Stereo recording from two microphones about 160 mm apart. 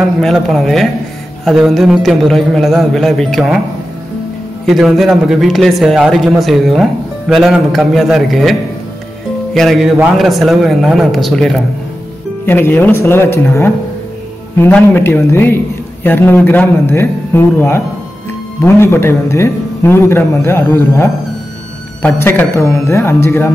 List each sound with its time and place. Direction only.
0.0 s a man's voice: centre (ahead or behind)
4.6 s a man's voice: centre (ahead or behind)
12.4 s a man's voice: 15° left (ahead or behind)